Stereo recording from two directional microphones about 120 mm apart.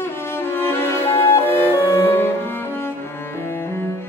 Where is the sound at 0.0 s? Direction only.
20° left (ahead or behind).